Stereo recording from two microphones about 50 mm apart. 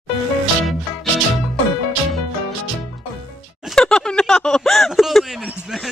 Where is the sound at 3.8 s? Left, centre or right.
Centre.